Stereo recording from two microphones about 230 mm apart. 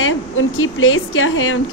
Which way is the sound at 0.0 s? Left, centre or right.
Left.